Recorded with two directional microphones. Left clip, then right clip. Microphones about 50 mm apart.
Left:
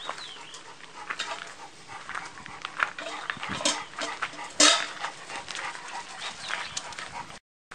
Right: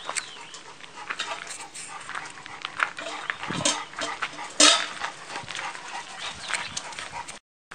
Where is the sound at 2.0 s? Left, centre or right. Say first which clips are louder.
Right 1 dB; centre.